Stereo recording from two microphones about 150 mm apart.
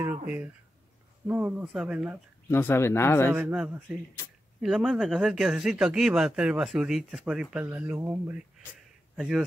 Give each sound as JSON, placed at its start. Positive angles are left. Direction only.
{"t": 1.2, "sound": "speech", "side_deg": -15}
{"t": 2.5, "sound": "speech", "side_deg": 15}
{"t": 3.3, "sound": "speech", "side_deg": -10}